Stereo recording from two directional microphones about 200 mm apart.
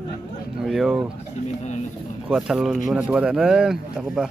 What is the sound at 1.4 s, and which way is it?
Speech, 35° left (ahead or behind).